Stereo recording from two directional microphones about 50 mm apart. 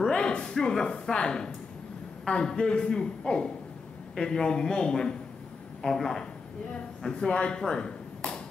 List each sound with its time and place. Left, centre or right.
0.1 s a man's voice: left